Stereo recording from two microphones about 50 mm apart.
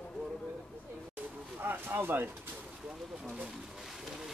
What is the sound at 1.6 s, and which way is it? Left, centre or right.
Speech, right.